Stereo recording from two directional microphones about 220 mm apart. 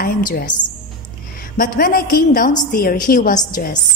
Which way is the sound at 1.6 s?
40° left (ahead or behind).